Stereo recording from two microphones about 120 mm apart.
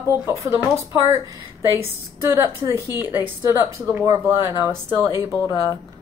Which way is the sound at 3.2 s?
20° right (ahead or behind).